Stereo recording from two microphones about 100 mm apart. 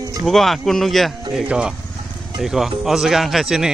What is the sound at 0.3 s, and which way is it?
Speech, centre (ahead or behind).